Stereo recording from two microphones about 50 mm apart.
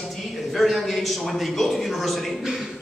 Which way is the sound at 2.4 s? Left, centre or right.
Centre.